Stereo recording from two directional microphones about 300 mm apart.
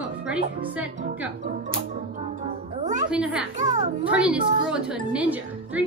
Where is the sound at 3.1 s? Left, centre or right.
Centre.